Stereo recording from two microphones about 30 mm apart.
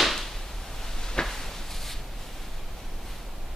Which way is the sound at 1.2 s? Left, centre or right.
Centre.